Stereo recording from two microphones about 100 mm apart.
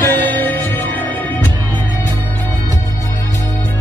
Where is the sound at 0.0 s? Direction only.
20° left (ahead or behind).